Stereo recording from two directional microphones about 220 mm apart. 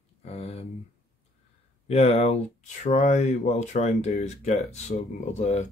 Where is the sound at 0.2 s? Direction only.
30° left (ahead or behind).